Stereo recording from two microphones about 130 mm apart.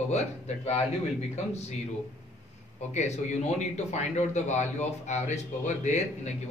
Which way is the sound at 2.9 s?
60° left (ahead or behind).